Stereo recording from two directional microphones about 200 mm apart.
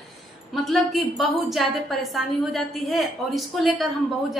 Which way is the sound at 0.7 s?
Centre (ahead or behind).